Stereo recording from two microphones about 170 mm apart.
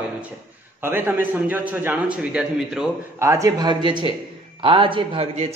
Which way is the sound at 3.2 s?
15° right (ahead or behind).